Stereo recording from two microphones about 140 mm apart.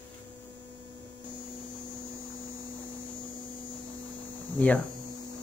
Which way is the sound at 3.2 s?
35° left (ahead or behind).